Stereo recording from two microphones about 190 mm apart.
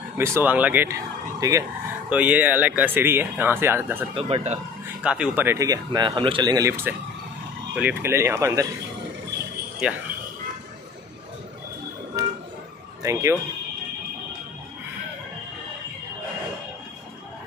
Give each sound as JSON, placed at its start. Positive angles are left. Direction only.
{"t": 0.2, "sound": "speech", "side_deg": -10}
{"t": 4.1, "sound": "speech", "side_deg": -30}
{"t": 5.0, "sound": "speech", "side_deg": -5}
{"t": 9.8, "sound": "speech", "side_deg": -5}
{"t": 13.0, "sound": "speech", "side_deg": -15}